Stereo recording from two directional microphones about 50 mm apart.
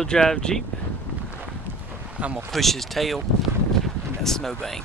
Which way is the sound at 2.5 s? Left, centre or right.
Centre.